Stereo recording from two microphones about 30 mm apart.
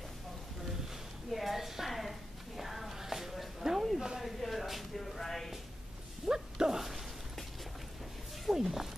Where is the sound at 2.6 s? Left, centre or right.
Centre.